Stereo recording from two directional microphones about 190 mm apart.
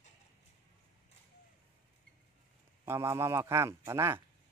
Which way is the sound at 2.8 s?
15° right (ahead or behind).